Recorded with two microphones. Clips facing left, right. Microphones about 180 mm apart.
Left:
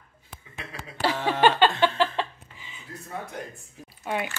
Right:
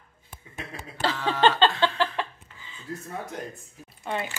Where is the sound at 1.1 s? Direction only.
20° left (ahead or behind).